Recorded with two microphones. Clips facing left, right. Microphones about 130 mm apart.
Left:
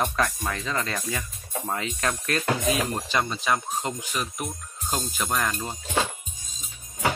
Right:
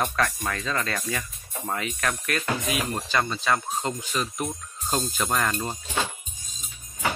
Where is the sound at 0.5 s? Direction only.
20° left (ahead or behind).